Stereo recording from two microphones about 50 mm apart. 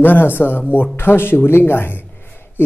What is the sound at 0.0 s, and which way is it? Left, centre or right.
Speech, left.